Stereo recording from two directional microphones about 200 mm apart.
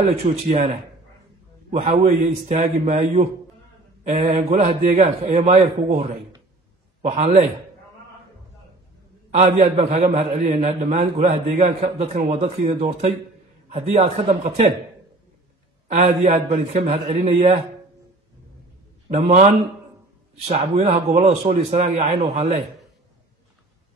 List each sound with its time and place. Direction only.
0.2 s speech: 30° right (ahead or behind)
1.7 s a man's voice: 35° right (ahead or behind)
7.0 s a man's voice: 30° right (ahead or behind)
9.3 s a man's voice: 35° right (ahead or behind)
15.9 s a man's voice: 35° right (ahead or behind)
19.2 s a man's voice: 35° right (ahead or behind)